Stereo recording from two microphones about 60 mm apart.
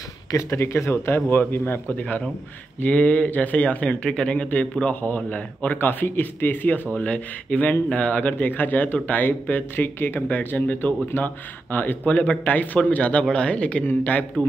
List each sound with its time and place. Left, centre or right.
0.4 s speech: left
1.9 s speech: left